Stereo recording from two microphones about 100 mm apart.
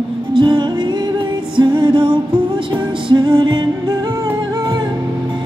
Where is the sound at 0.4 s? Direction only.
50° right (ahead or behind).